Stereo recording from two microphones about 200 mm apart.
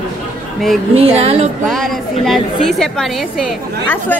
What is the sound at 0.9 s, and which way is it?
Speech, 30° right (ahead or behind).